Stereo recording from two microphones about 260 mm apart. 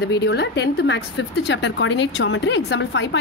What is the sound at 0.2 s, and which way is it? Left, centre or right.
A woman's voice, left.